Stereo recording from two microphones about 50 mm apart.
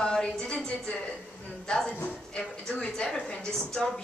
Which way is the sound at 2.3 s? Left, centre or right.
Centre.